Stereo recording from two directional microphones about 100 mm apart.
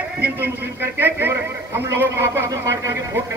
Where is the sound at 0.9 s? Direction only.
20° right (ahead or behind).